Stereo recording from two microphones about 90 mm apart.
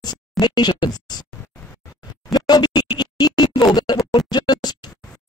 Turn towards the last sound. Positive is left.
turn(degrees=50)  # may be behind; listen again after turning